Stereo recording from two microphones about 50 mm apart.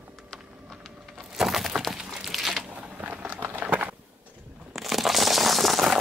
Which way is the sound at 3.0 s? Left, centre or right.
Right.